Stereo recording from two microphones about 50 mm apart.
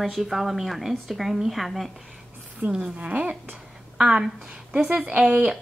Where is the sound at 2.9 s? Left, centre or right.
Right.